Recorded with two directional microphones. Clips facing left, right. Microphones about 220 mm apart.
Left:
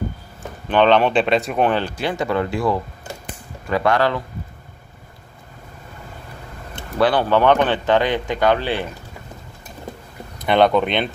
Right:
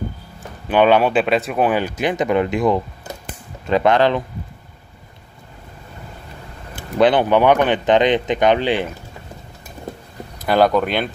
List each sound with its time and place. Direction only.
0.7 s speech: 10° right (ahead or behind)
7.0 s speech: 20° right (ahead or behind)
10.4 s speech: centre (ahead or behind)